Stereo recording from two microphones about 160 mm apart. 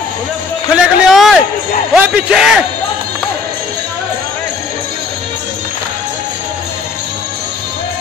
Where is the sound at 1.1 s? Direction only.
Centre (ahead or behind).